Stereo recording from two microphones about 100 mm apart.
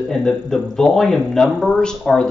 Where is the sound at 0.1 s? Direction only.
5° left (ahead or behind).